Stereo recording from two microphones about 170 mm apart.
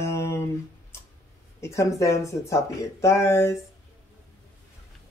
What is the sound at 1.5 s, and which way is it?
Speech, 15° left (ahead or behind).